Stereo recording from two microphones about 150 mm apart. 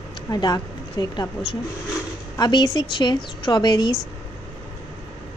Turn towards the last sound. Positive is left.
turn(degrees=30)  # may be behind; listen again after turning